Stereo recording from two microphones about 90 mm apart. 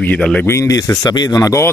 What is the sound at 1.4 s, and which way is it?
Speech, 35° left (ahead or behind).